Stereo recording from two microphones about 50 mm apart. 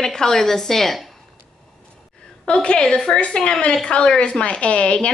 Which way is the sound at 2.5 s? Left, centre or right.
Left.